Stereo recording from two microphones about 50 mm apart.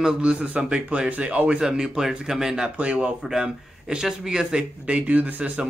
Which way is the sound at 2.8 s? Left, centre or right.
Right.